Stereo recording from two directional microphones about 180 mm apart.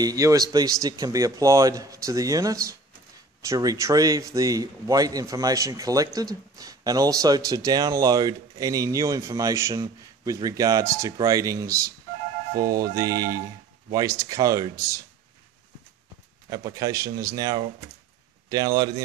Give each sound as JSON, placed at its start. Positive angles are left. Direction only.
{"t": 0.0, "sound": "speech", "side_deg": -20}
{"t": 16.4, "sound": "speech", "side_deg": -20}